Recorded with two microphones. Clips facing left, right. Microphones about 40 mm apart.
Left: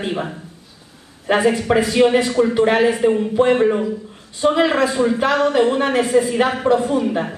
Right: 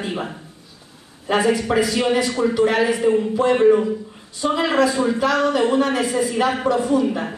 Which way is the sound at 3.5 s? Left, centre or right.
Centre.